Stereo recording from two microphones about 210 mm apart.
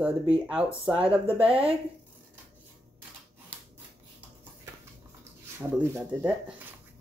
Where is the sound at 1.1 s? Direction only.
25° right (ahead or behind).